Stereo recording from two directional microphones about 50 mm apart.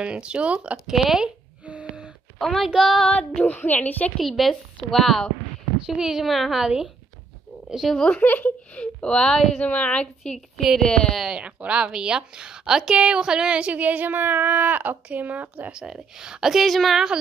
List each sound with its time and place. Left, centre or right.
0.0 s speech: right
0.8 s a woman's voice: centre
1.2 s a sound: right
2.3 s a woman's voice: centre
3.1 s speech: left
4.2 s a woman's voice: centre
5.9 s a woman's voice: centre
6.2 s a woman's voice: centre
8.1 s speech: left
9.0 s speech: centre
9.6 s a woman's voice: left; by 11.1 s centre
11.2 s a woman's voice: centre; by 15.7 s right
15.7 s a woman's voice: centre